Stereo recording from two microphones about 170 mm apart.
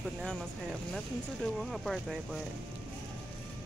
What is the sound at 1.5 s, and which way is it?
Speech, centre (ahead or behind).